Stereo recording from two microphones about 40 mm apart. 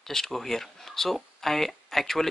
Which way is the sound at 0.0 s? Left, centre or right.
Centre.